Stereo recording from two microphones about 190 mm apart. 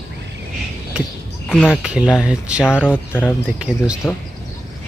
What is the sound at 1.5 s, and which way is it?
Speech, 5° left (ahead or behind).